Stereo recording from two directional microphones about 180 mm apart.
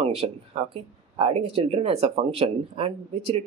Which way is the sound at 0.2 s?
25° right (ahead or behind).